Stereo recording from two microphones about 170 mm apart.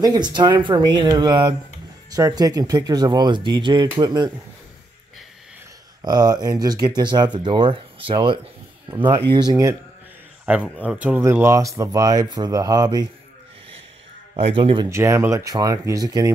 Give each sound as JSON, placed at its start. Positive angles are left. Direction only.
{"t": 0.0, "sound": "speech", "side_deg": -25}
{"t": 6.0, "sound": "speech", "side_deg": -25}
{"t": 10.5, "sound": "speech", "side_deg": -10}
{"t": 14.3, "sound": "speech", "side_deg": -30}
{"t": 14.9, "sound": "speech", "side_deg": -15}